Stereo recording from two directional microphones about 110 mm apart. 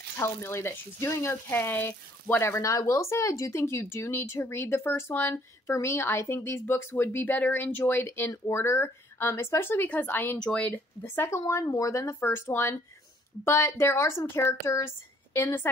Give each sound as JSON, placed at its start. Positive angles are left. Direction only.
{"t": 0.2, "sound": "speech", "side_deg": 20}